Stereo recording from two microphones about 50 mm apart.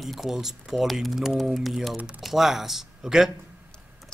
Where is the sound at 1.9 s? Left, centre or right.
Right.